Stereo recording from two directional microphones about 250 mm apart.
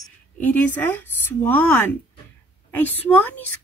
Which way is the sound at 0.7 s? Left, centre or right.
Centre.